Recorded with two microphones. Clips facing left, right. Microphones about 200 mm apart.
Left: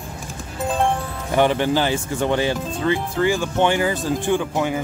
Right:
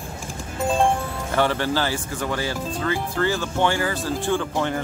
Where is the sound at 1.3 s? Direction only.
15° left (ahead or behind).